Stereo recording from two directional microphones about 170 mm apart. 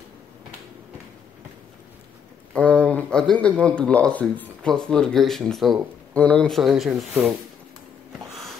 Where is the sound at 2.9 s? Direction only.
5° left (ahead or behind).